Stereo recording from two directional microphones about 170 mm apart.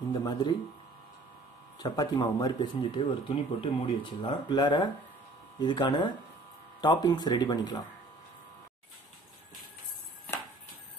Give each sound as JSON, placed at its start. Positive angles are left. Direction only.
{"t": 0.2, "sound": "speech", "side_deg": 25}
{"t": 1.8, "sound": "speech", "side_deg": 25}
{"t": 3.0, "sound": "speech", "side_deg": 30}